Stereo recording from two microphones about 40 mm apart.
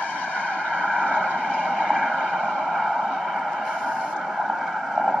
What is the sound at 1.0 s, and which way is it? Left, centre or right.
Vehicle, right.